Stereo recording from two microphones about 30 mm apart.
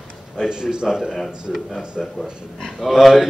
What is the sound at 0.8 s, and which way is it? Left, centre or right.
Speech, centre.